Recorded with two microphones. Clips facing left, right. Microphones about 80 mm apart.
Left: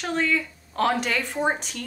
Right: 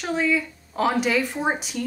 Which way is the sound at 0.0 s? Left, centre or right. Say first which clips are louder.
Right 2 dB; centre.